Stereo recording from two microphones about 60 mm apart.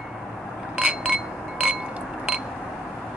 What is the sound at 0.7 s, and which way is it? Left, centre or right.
Chink, centre.